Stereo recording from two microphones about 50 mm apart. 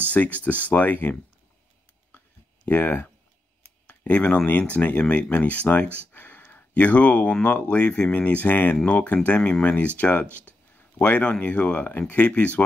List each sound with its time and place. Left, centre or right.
0.1 s speech: left
2.7 s speech: left
6.1 s a sound: left
7.7 s speech: left